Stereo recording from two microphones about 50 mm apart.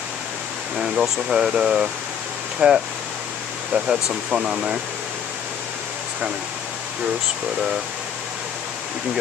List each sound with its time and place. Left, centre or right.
0.7 s speech: centre